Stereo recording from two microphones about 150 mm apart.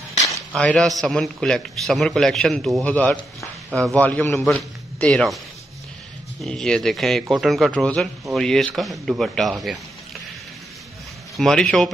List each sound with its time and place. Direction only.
0.6 s a man's voice: 5° left (ahead or behind)
6.4 s a man's voice: 5° left (ahead or behind)
11.3 s a man's voice: 5° left (ahead or behind)